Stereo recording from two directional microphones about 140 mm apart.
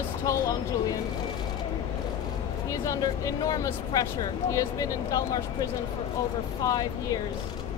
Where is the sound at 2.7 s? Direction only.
25° left (ahead or behind).